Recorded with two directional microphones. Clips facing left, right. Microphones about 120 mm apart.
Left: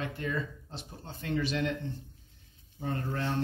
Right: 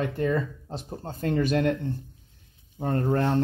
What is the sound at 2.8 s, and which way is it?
Speech, 50° right (ahead or behind).